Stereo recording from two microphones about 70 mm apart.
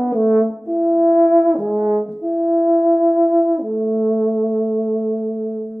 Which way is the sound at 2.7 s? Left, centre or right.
Centre.